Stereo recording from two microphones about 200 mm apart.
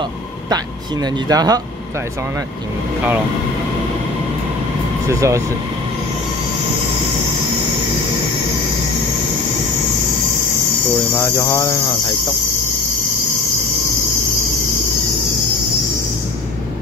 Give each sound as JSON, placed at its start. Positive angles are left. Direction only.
{"t": 1.0, "sound": "speech", "side_deg": -20}
{"t": 5.0, "sound": "speech", "side_deg": -15}
{"t": 11.1, "sound": "cricket", "side_deg": 15}